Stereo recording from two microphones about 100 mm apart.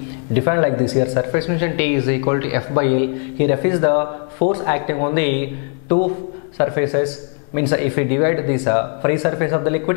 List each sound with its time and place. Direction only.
0.4 s a man's voice: 10° left (ahead or behind)